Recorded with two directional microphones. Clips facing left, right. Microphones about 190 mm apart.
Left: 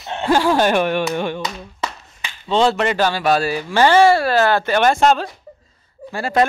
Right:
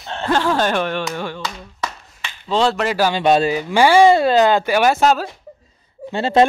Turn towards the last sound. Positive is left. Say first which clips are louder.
# right 3 dB
turn(degrees=-25)  # may be behind; listen again after turning